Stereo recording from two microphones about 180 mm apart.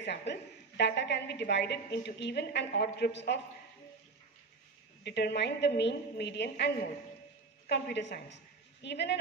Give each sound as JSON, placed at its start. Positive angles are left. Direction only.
{"t": 0.3, "sound": "a woman's voice", "side_deg": 70}
{"t": 5.0, "sound": "a woman's voice", "side_deg": 70}